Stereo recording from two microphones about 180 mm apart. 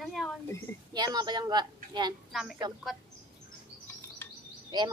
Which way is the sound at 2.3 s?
Centre (ahead or behind).